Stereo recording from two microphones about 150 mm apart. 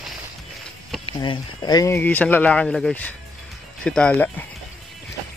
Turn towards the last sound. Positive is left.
turn(degrees=10)  # may be behind; listen again after turning